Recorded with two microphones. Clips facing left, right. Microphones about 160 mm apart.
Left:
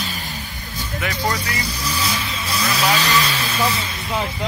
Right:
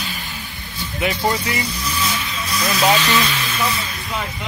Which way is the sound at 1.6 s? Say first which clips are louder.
Right 1 dB; 35° left (ahead or behind).